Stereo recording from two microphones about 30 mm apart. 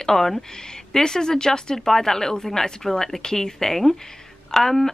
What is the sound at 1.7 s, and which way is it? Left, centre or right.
Speech, centre.